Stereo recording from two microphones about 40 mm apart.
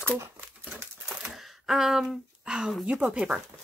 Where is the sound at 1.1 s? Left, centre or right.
Centre.